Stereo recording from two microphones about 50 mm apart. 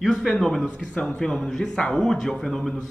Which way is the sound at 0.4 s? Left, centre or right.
Centre.